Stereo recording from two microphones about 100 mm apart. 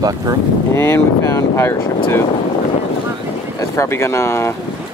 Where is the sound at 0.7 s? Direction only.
25° left (ahead or behind).